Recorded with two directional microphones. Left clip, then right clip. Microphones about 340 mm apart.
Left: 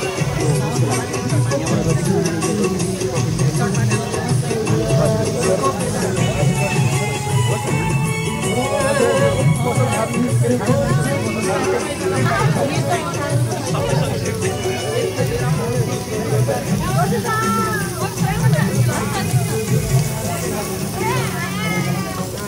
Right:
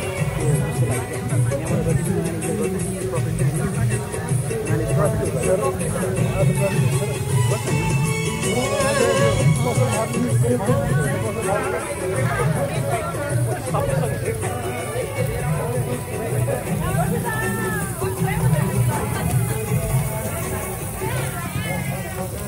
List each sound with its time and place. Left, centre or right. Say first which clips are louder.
8.5 s music: left 2 dB; centre